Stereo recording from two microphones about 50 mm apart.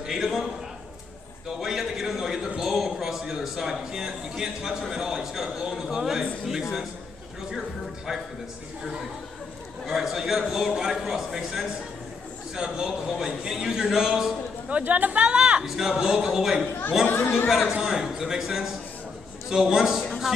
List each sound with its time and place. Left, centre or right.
0.0 s a sound: centre
1.6 s a sound: centre
2.6 s a man's voice: centre
9.8 s a man's voice: centre
14.8 s a woman's voice: right
15.6 s a man's voice: centre
17.0 s speech: left
17.5 s a man's voice: centre